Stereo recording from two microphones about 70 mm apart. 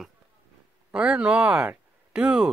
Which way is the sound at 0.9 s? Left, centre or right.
Centre.